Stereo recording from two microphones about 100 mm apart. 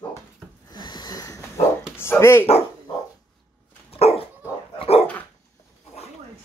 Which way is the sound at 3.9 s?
85° left.